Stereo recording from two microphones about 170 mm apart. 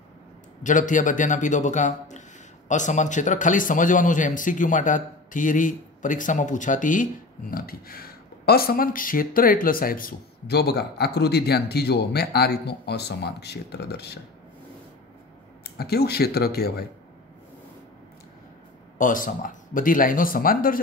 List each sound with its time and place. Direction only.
0.7 s speech: 50° left (ahead or behind)
7.5 s speech: 60° left (ahead or behind)
15.6 s speech: 65° left (ahead or behind)
18.9 s speech: 50° left (ahead or behind)